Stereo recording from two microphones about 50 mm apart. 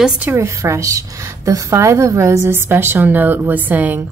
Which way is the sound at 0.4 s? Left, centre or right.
Right.